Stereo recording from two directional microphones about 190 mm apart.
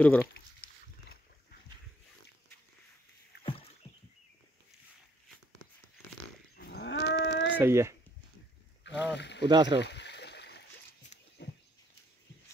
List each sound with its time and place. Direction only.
0.0 s speech: 10° left (ahead or behind)
3.8 s a sound: 35° left (ahead or behind)
6.5 s dog: 60° left (ahead or behind)
7.5 s speech: 15° right (ahead or behind)
8.8 s rowboat: 65° left (ahead or behind)
9.5 s speech: 25° right (ahead or behind)
9.8 s stream: 65° left (ahead or behind)
11.4 s a sound: 65° left (ahead or behind)